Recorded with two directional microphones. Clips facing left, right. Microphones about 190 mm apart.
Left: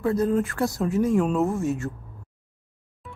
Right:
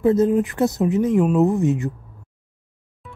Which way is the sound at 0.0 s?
20° right (ahead or behind).